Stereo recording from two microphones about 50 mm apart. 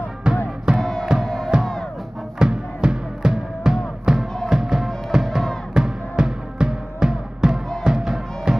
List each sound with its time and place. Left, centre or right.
0.3 s music: centre
0.7 s music: centre
2.3 s music: centre